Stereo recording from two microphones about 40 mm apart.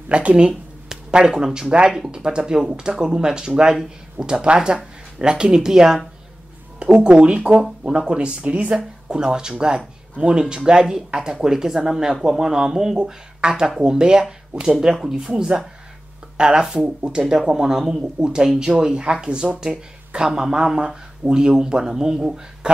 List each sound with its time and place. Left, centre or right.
0.1 s speech: right
1.2 s speech: centre; by 8.8 s right
9.1 s speech: centre
13.0 s speech: right
14.9 s speech: centre; by 17.2 s right
17.5 s speech: centre